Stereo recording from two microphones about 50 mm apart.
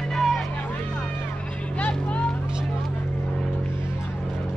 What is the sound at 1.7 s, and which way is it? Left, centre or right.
Vehicle, left.